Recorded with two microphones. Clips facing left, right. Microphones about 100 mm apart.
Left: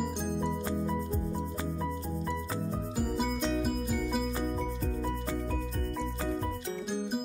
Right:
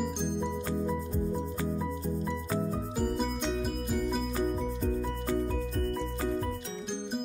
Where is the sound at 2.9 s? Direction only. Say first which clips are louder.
Even; 5° left (ahead or behind).